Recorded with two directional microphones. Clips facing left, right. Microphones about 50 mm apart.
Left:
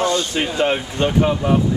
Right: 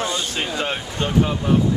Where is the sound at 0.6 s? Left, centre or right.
Centre.